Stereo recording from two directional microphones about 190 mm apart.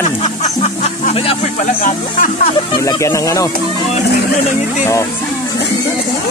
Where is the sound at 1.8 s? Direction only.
45° left (ahead or behind).